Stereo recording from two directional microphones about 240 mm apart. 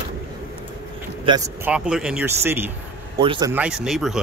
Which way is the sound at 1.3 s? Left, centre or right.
Centre.